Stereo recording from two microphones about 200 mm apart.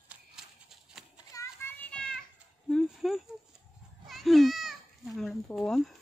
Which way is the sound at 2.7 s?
Centre (ahead or behind).